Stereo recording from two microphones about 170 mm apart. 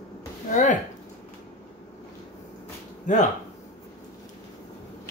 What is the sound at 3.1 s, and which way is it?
Speech, 45° left (ahead or behind).